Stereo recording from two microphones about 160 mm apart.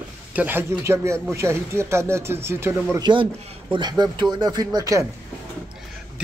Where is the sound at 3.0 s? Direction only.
30° right (ahead or behind).